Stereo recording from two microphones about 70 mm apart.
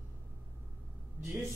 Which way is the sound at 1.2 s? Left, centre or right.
Right.